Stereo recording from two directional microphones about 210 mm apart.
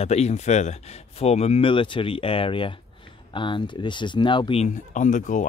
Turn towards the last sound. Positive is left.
turn(degrees=35)  # may be behind; listen again after turning